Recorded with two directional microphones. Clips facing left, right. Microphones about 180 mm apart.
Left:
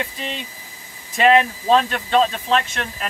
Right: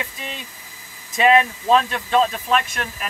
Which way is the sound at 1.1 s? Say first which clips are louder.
Left 1 dB; 25° left (ahead or behind).